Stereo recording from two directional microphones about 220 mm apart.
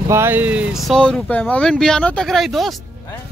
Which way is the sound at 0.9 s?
5° left (ahead or behind).